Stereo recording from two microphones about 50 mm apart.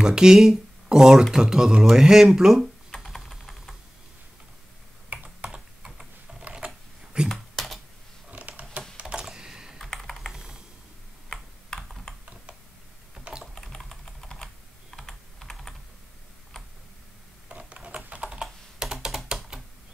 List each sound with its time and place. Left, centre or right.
0.0 s speech: centre
3.0 s typing: centre
5.1 s computer keyboard: right
6.6 s typing: right
7.2 s computer keyboard: centre
8.3 s a sound: right
9.2 s typing: centre
9.8 s computer keyboard: centre
13.3 s typing: right
13.6 s computer keyboard: centre
17.5 s a sound: right
18.3 s computer keyboard: centre
19.0 s typing: centre